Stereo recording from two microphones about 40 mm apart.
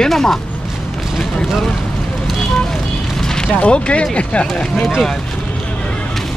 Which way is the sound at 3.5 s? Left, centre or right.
Left.